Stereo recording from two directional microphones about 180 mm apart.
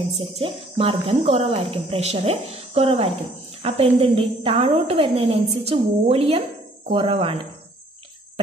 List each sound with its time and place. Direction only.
0.4 s speech: 35° right (ahead or behind)